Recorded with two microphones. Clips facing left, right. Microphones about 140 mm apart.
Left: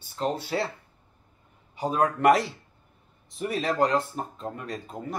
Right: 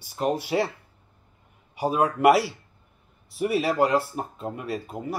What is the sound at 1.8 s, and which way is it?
Speech, 10° right (ahead or behind).